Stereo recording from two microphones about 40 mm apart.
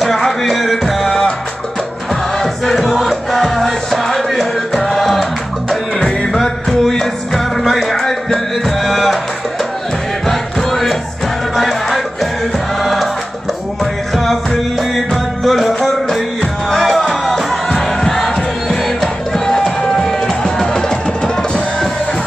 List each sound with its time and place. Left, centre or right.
0.0 s music: centre
2.3 s music: centre
5.9 s music: centre
10.2 s music: centre
14.1 s music: centre